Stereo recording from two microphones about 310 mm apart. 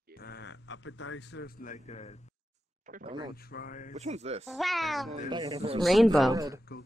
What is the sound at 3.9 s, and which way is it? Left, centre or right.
Speech, right.